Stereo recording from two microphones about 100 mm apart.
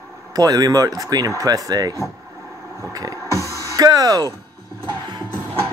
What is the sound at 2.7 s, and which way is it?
Vehicle, 35° right (ahead or behind).